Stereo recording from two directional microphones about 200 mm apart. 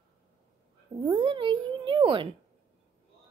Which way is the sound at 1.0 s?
25° right (ahead or behind).